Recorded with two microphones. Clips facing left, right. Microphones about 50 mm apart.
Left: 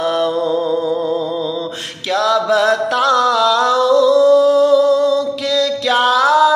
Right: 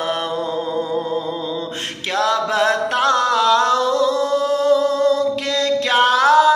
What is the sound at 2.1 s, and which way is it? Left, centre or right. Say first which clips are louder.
Music: left 4 dB; right.